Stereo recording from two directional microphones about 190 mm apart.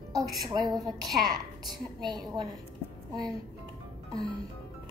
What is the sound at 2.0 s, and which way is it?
Speech, 20° right (ahead or behind).